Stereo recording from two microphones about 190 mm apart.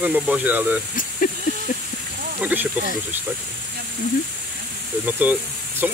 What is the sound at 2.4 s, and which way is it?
Speech, 10° right (ahead or behind).